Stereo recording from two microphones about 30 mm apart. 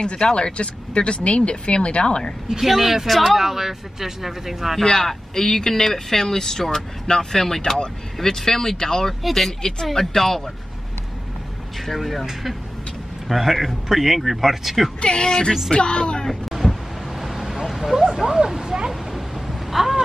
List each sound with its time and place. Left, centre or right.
0.0 s speech: left
2.6 s speech: centre
4.8 s speech: centre
11.8 s speech: centre
13.3 s speech: centre
15.0 s speech: left
16.4 s vehicle: centre
18.4 s a sound: centre